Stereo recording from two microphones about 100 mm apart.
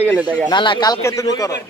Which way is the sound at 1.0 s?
30° left (ahead or behind).